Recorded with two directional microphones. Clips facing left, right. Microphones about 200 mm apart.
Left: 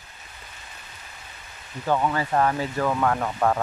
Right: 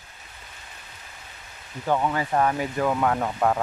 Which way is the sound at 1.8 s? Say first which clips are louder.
Even; 15° right (ahead or behind).